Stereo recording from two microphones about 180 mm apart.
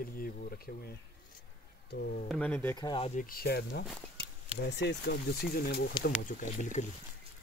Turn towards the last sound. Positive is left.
turn(degrees=45)  # may be behind; listen again after turning